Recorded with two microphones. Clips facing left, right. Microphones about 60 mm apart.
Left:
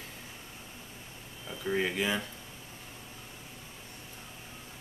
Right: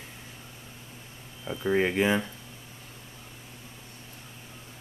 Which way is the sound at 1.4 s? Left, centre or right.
Right.